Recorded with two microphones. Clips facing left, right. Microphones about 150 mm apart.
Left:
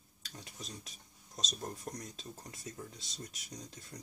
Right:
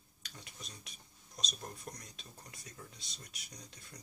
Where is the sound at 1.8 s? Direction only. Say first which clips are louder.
Left 6 dB; 35° left (ahead or behind).